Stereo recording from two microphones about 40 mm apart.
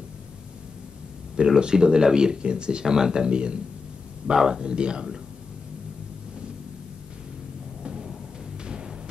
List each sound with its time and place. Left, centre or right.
1.3 s speech: centre
7.8 s thunder: centre